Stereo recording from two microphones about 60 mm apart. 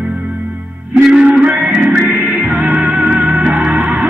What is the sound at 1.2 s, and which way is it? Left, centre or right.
Music, right.